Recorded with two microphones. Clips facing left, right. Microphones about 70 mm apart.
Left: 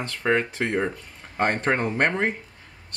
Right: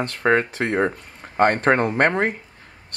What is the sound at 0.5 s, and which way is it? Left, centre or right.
Speech, right.